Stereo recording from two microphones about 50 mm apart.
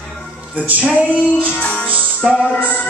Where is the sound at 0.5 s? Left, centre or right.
Right.